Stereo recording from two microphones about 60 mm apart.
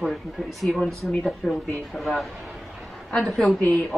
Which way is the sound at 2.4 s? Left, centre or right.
Centre.